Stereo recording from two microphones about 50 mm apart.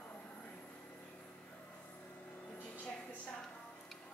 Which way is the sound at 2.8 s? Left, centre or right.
Left.